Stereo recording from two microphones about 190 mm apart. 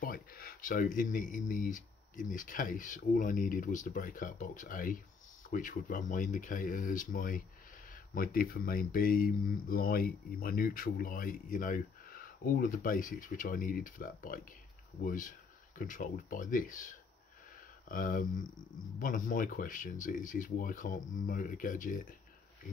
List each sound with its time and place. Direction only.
0.0 s speech: 50° left (ahead or behind)